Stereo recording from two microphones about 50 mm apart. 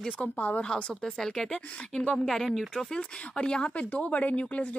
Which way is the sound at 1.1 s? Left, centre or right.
Centre.